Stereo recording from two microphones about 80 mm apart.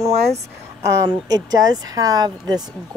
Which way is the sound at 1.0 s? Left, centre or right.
Right.